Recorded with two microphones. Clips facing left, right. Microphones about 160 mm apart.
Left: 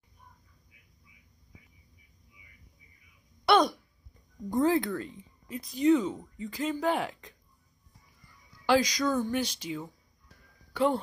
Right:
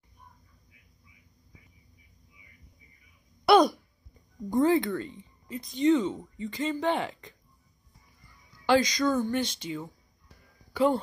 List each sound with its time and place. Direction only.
3.4 s throat clearing: centre (ahead or behind)
4.5 s speech: centre (ahead or behind)
8.6 s speech: 10° left (ahead or behind)